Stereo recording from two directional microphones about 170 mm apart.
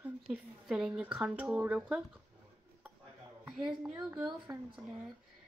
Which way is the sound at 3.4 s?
5° right (ahead or behind).